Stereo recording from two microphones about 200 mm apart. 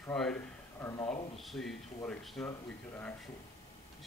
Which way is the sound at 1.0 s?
30° left (ahead or behind).